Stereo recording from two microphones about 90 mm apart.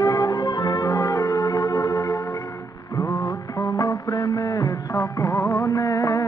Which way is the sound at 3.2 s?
40° left (ahead or behind).